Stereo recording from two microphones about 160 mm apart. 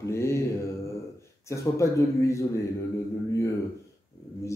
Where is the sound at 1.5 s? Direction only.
20° left (ahead or behind).